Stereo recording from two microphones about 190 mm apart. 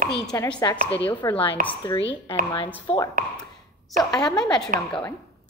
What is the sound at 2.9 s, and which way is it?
Speech, 25° left (ahead or behind).